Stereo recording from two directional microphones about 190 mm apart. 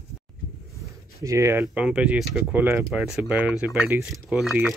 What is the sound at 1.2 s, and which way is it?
Speech, 15° right (ahead or behind).